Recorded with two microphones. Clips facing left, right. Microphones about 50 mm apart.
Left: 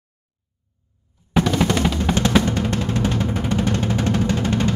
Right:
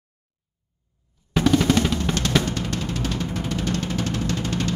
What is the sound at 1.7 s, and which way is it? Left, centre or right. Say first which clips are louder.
Drum: even; centre.